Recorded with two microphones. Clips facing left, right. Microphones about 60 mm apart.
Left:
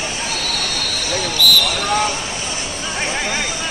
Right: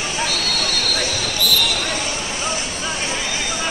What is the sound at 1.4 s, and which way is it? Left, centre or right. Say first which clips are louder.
Basketball bounce: left 5 dB; left.